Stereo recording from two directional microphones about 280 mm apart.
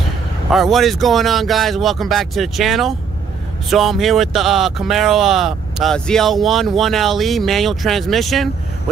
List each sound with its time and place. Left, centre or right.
0.5 s speech: centre